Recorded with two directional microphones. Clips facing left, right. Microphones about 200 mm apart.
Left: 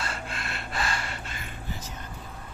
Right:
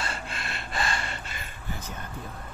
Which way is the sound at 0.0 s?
Centre (ahead or behind).